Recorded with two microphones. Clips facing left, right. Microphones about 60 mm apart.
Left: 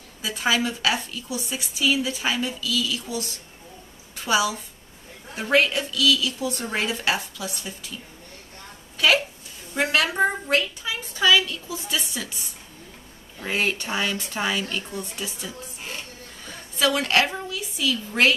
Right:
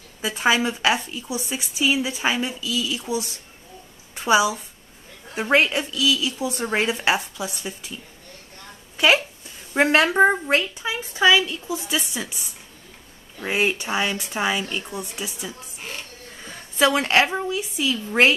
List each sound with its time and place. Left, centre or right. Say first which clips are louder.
0.2 s a woman's voice: right 3 dB; right
8.9 s a sound: right 2 dB; right
9.8 s a woman's voice: right 5 dB; right; by 15.5 s centre
16.7 s a woman's voice: right 3 dB; right